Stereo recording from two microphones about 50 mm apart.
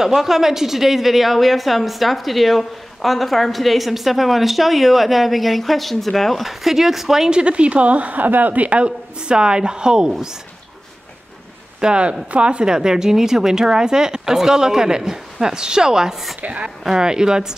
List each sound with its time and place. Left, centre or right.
0.0 s speech: centre
7.2 s a woman's voice: right
11.8 s a woman's voice: right
16.3 s a woman's voice: right
16.8 s a woman's voice: centre